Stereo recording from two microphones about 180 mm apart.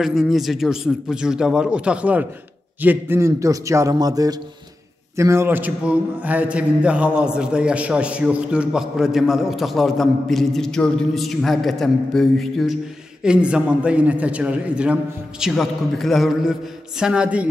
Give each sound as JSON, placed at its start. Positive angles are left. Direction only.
{"t": 0.0, "sound": "a man's voice", "side_deg": 0}